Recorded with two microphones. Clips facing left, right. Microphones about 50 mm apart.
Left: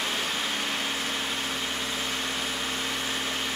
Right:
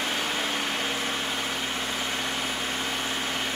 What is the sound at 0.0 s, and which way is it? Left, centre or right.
Vehicle, right.